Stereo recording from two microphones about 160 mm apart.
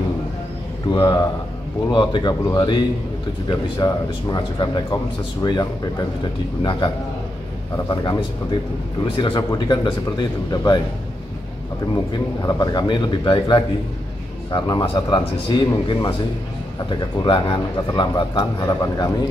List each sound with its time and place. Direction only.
0.9 s speech: 25° left (ahead or behind)
12.4 s speech: 25° left (ahead or behind)